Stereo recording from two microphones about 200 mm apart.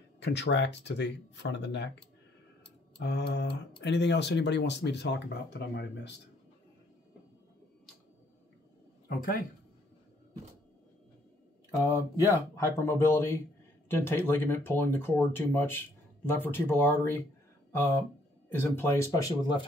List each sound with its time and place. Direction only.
0.2 s speech: 60° left (ahead or behind)
3.0 s speech: 55° left (ahead or behind)
11.7 s speech: 15° left (ahead or behind)
18.5 s speech: 10° left (ahead or behind)